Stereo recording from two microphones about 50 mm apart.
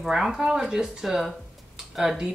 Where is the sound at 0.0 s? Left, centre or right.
Centre.